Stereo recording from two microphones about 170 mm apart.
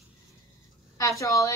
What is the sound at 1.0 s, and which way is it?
Speech, 20° left (ahead or behind).